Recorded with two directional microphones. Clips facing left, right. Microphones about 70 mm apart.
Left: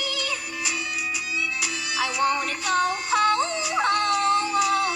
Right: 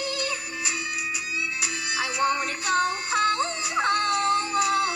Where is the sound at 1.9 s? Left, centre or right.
Right.